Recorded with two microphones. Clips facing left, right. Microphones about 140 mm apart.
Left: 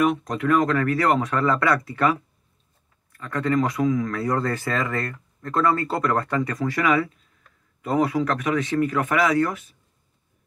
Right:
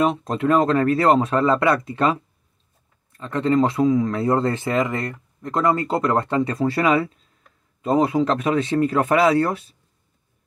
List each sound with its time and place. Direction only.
0.0 s speech: 25° right (ahead or behind)